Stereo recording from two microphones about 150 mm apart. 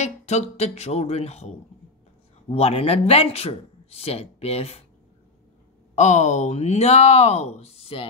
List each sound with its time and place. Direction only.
0.0 s speech: 50° left (ahead or behind)
2.5 s speech: 40° left (ahead or behind)
5.9 s speech: 50° left (ahead or behind)